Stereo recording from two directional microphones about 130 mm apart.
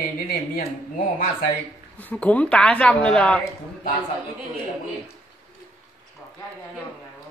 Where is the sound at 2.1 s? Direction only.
10° left (ahead or behind).